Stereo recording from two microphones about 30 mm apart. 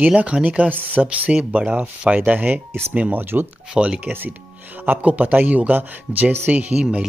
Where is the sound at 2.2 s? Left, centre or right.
Right.